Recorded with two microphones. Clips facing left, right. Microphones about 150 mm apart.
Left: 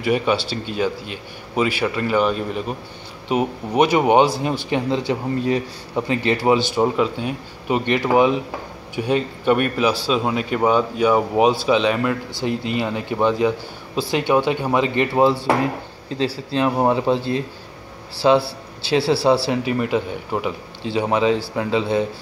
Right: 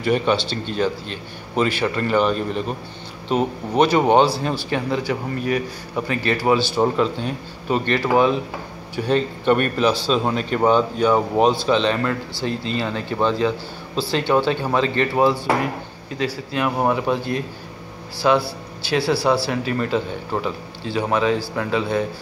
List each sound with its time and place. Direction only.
0.0 s a man's voice: 10° left (ahead or behind)
6.8 s a man's voice: 10° left (ahead or behind)